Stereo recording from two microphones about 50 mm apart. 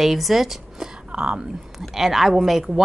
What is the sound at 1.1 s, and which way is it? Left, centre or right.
Speech, right.